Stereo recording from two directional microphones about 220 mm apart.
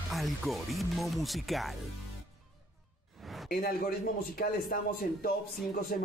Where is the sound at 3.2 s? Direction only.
Centre (ahead or behind).